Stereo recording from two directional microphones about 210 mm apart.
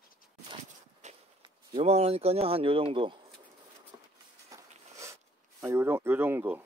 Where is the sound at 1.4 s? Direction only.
25° right (ahead or behind).